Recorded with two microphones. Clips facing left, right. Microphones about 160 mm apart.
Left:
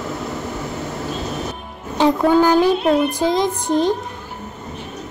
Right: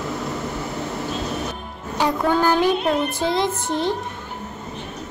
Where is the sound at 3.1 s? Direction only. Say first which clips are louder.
Left 3 dB; 15° left (ahead or behind).